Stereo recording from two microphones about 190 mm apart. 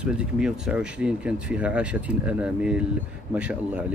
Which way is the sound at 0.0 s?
5° right (ahead or behind).